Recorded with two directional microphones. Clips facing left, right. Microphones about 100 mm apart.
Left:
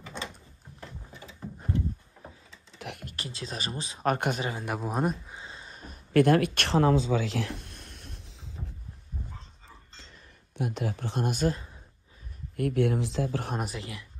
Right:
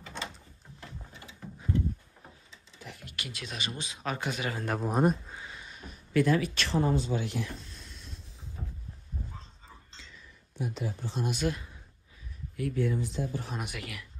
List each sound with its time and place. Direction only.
2.5 s a sound: 60° left (ahead or behind)
3.1 s speech: 35° left (ahead or behind)
4.0 s speech: 50° left (ahead or behind)
4.5 s speech: 10° left (ahead or behind)
4.8 s speech: centre (ahead or behind)
5.3 s a sound: 25° left (ahead or behind)
6.1 s speech: 65° left (ahead or behind)
9.9 s a sound: 60° left (ahead or behind)
11.3 s speech: 35° left (ahead or behind)
12.5 s speech: 65° left (ahead or behind)
13.6 s speech: 30° left (ahead or behind)